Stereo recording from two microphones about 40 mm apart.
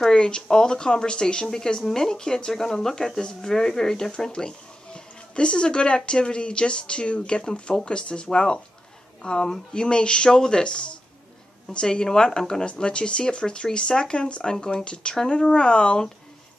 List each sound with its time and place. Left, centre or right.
0.0 s speech: centre